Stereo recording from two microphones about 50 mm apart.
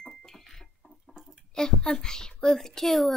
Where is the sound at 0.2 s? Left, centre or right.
Centre.